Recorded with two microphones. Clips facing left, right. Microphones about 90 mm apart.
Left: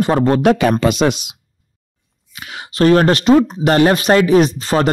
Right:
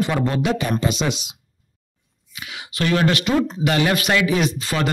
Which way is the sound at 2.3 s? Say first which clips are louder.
Left 4 dB; 45° left (ahead or behind).